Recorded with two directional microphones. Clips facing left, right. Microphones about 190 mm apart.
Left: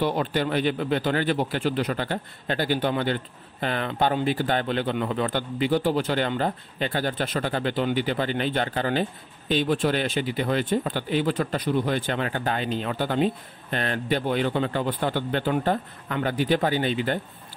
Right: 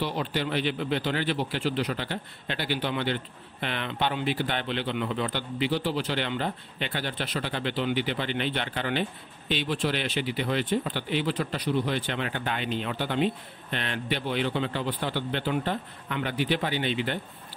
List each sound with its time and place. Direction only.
0.0 s speech: 50° left (ahead or behind)